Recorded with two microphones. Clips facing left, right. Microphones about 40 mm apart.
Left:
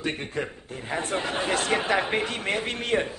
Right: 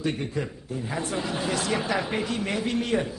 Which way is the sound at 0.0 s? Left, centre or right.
Left.